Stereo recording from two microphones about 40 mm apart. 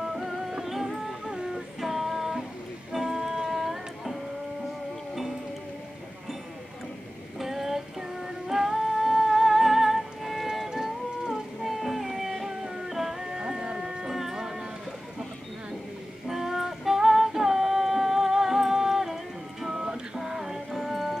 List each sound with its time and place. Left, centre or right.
0.0 s music: centre
7.3 s female singing: centre
11.6 s music: centre
16.3 s female singing: centre
19.8 s music: centre